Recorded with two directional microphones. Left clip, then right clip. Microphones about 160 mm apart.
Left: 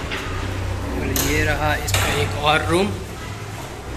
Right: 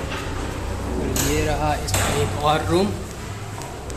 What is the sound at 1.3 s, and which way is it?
Speech, 5° right (ahead or behind).